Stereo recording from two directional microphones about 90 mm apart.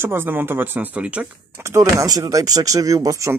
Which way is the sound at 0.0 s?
25° right (ahead or behind).